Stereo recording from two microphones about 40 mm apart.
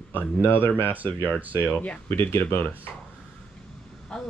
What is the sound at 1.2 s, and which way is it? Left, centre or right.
Speech, right.